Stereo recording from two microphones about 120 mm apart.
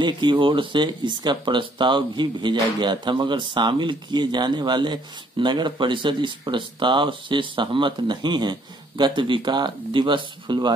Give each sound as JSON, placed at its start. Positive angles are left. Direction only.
{"t": 0.0, "sound": "speech", "side_deg": -40}